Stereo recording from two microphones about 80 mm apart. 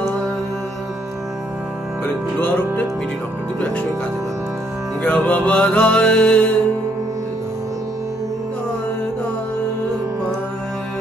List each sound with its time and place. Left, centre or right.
2.0 s music: left
5.0 s music: left